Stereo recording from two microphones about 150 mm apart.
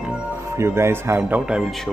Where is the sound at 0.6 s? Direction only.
15° right (ahead or behind).